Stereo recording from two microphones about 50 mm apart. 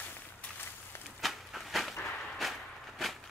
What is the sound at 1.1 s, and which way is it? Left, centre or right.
Walk, centre.